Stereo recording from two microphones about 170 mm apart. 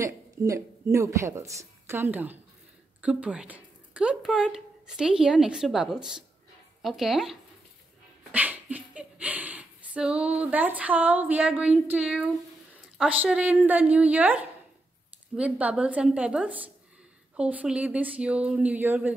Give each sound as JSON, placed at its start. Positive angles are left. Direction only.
{"t": 0.0, "sound": "speech", "side_deg": -15}